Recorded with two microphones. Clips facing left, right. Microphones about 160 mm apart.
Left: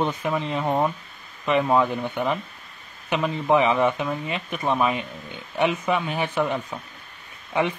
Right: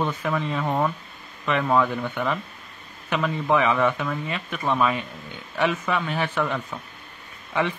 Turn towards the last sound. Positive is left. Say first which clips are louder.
# left 1 dB
turn(degrees=20)  # may be behind; listen again after turning